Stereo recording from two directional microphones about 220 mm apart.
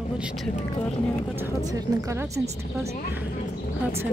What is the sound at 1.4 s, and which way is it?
Speech, 15° right (ahead or behind).